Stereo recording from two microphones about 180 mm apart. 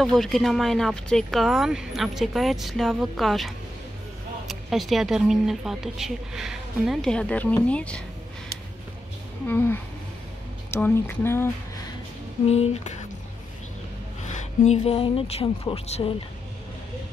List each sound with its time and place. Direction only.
0.0 s speech: centre (ahead or behind)
9.5 s speech: 10° left (ahead or behind)
12.4 s speech: 35° left (ahead or behind)
14.2 s speech: 40° left (ahead or behind)